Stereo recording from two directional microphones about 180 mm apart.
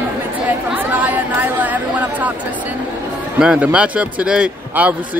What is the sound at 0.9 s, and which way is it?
Chatter, 10° right (ahead or behind).